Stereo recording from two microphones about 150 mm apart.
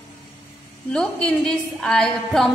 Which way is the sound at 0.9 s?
5° left (ahead or behind).